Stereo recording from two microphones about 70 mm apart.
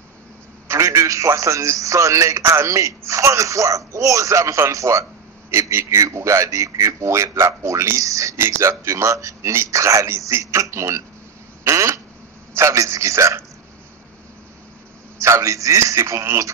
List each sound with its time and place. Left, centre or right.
0.7 s a man's voice: right
8.4 s a man's voice: right
11.6 s quack: right
12.5 s a man's voice: right
15.1 s a man's voice: right